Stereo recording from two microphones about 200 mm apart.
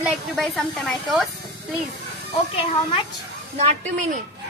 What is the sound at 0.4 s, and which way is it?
Speech, centre (ahead or behind).